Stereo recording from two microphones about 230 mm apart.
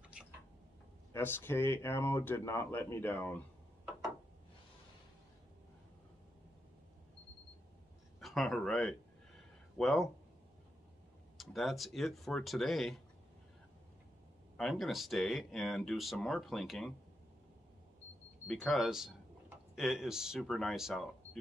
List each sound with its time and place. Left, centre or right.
0.2 s a sound: centre
1.1 s speech: centre
8.2 s speech: centre
11.3 s speech: centre
14.6 s speech: centre
18.5 s speech: centre